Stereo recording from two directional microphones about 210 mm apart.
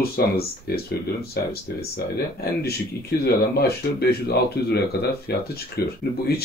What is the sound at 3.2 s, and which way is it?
Speech, 50° left (ahead or behind).